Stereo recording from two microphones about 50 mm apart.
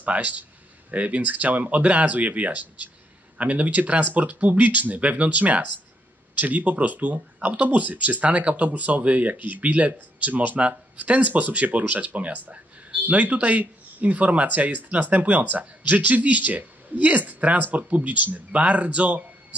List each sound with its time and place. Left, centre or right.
0.0 s speech: right